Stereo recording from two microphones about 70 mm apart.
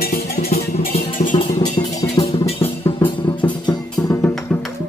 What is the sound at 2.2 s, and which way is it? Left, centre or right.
Music, left.